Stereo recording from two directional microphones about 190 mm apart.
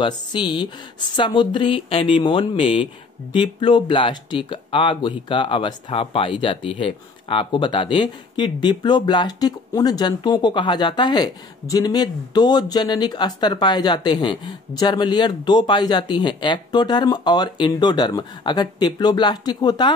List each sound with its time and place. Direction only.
0.0 s speech: 25° left (ahead or behind)